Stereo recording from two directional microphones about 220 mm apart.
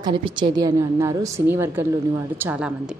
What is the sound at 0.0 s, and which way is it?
A woman's voice, 20° right (ahead or behind).